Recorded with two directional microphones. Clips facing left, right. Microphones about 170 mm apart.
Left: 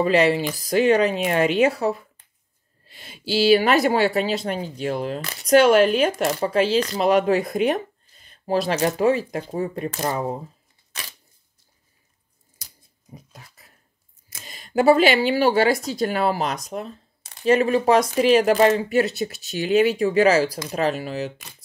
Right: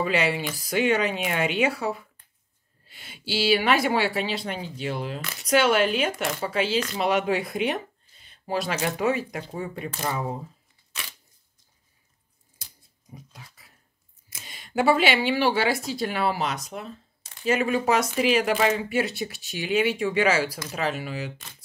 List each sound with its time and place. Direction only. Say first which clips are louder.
0.0 s speech: left 7 dB; 40° left (ahead or behind)
13.1 s a sound: left 2 dB; 45° left (ahead or behind)
14.4 s speech: left 5 dB; 40° left (ahead or behind)